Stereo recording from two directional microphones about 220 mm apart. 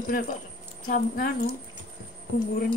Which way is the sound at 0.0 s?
40° left (ahead or behind).